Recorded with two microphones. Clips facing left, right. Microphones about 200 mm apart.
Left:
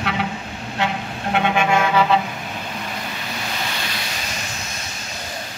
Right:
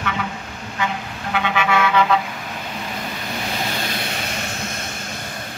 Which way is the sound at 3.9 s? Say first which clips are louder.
Right 3 dB; 55° right (ahead or behind).